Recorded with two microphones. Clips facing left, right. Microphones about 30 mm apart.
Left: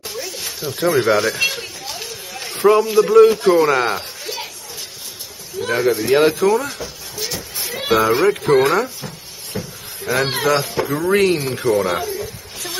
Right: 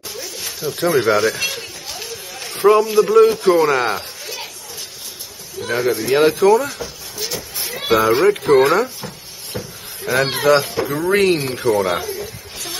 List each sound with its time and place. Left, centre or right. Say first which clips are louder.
0.1 s a sound: left 1 dB; centre
5.7 s speech: left 1 dB; centre
6.4 s speech: right 3 dB; right
6.7 s a sound: even; centre
8.1 s speech: right 1 dB; right
8.4 s a man's voice: right 2 dB; right
10.0 s a man's voice: right 2 dB; right
11.7 s a man's voice: even; right